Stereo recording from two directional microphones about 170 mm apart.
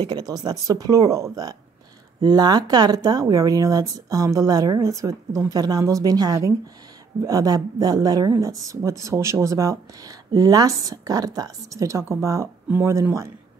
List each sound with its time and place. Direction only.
0.0 s speech: 25° right (ahead or behind)